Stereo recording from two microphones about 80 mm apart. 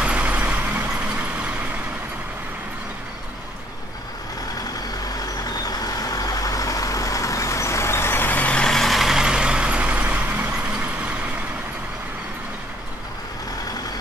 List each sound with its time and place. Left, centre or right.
0.0 s vehicle: centre
5.4 s vehicle: left; by 10.5 s centre